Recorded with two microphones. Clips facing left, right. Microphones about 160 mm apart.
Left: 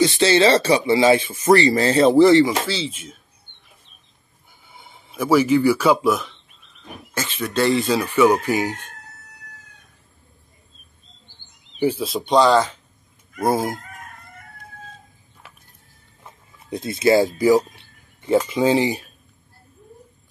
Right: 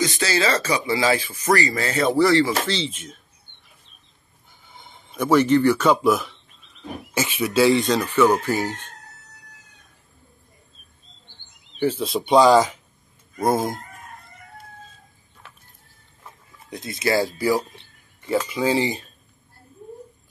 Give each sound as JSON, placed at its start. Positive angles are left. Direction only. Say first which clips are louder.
{"t": 0.0, "sound": "speech", "louder": "left 7 dB", "side_deg": 25}
{"t": 2.6, "sound": "speech", "louder": "even", "side_deg": 5}
{"t": 4.6, "sound": "speech", "louder": "even", "side_deg": 10}
{"t": 12.0, "sound": "speech", "louder": "right 2 dB", "side_deg": 0}
{"t": 13.4, "sound": "speech", "louder": "left 1 dB", "side_deg": 5}
{"t": 16.7, "sound": "speech", "louder": "left 6 dB", "side_deg": 25}